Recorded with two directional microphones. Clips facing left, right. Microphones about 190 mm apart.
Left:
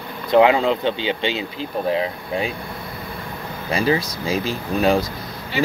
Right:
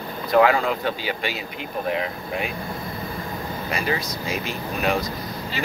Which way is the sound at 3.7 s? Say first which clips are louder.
Left 7 dB; 30° left (ahead or behind).